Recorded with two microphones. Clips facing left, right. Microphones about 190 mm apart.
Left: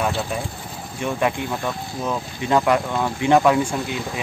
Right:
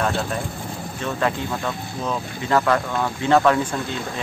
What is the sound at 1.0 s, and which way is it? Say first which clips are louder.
Speech: left 2 dB; 15° left (ahead or behind).